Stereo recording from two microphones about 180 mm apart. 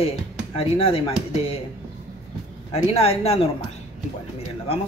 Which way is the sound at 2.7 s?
35° left (ahead or behind).